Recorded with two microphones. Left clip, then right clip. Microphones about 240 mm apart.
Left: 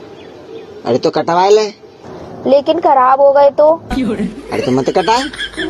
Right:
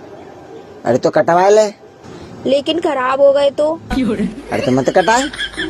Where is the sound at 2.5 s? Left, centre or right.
Right.